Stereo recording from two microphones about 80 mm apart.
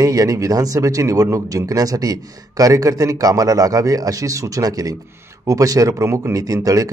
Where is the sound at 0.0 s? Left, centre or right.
Right.